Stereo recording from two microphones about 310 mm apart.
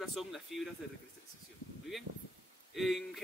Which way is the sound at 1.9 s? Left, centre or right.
Centre.